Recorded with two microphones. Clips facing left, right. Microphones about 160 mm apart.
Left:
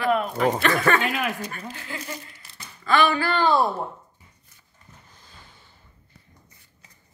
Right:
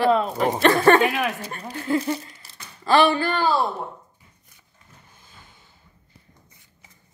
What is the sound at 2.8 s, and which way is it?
Speech, 30° right (ahead or behind).